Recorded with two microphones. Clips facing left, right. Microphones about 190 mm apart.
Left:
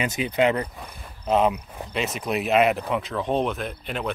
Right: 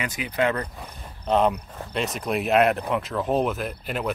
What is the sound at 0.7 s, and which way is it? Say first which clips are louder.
Speech: even; 5° left (ahead or behind).